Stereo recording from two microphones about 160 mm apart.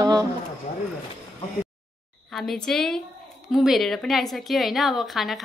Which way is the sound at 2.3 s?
Centre (ahead or behind).